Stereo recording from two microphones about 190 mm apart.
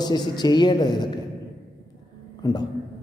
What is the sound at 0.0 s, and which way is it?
A man's voice, 20° left (ahead or behind).